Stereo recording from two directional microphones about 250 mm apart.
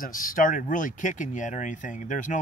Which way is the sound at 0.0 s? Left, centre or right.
Left.